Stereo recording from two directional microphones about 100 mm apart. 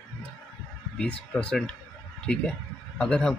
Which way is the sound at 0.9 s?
10° left (ahead or behind).